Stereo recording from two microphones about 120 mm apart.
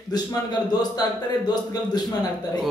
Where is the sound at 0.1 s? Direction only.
35° left (ahead or behind).